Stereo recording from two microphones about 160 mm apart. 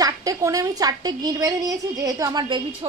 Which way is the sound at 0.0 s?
20° right (ahead or behind).